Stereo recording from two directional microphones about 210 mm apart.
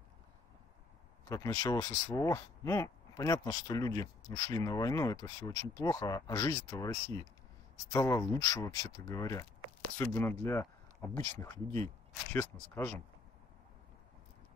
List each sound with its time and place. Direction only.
1.3 s speech: 15° left (ahead or behind)